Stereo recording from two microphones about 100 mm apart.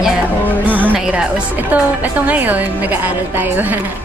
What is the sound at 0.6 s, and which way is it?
A woman's voice, 15° right (ahead or behind).